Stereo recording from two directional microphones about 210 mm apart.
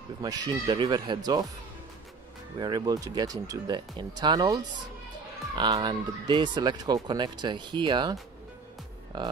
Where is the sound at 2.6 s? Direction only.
20° right (ahead or behind).